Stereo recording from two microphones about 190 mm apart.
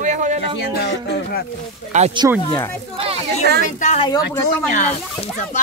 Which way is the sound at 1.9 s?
40° right (ahead or behind).